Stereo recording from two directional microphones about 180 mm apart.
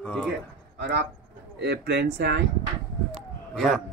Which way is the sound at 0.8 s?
70° right (ahead or behind).